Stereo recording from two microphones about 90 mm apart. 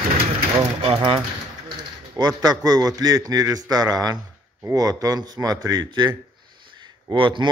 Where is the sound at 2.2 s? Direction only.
45° right (ahead or behind).